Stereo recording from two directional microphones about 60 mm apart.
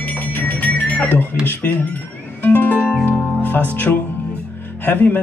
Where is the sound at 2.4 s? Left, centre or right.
Left.